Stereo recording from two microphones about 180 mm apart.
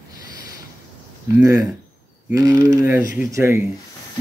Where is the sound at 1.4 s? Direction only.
20° right (ahead or behind).